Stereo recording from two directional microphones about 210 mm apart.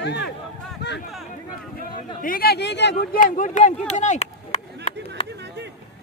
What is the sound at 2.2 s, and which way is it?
Speech, 45° left (ahead or behind).